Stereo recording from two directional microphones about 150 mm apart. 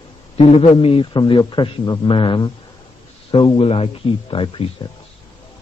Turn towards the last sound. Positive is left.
turn(degrees=35)  # may be behind; listen again after turning